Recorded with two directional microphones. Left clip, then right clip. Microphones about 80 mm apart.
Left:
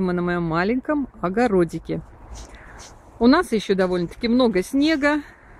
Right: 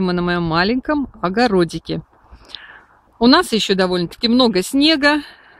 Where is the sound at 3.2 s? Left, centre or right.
Right.